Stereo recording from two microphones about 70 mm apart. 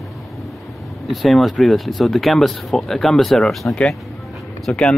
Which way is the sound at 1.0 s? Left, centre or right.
Centre.